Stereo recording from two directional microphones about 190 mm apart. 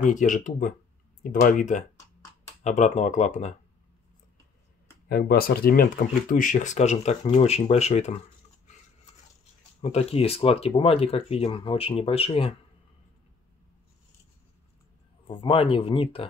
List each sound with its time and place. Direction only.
0.0 s speech: 40° left (ahead or behind)
5.0 s speech: 55° left (ahead or behind); by 8.2 s 35° left (ahead or behind)
9.8 s speech: 35° left (ahead or behind)
15.2 s speech: 30° left (ahead or behind)